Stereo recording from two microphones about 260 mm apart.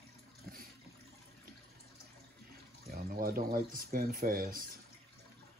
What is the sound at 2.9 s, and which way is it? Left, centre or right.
Speech, right.